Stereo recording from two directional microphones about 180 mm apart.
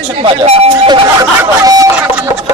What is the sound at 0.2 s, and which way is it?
Speech, 30° right (ahead or behind).